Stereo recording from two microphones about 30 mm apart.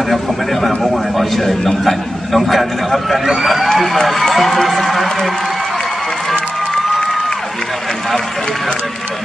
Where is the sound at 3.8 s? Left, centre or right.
Centre.